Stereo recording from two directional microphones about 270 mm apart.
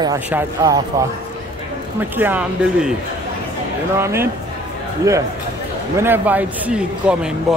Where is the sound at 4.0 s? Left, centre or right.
Centre.